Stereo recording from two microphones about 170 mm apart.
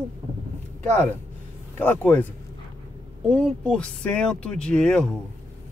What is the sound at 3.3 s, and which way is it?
Speech, 5° left (ahead or behind).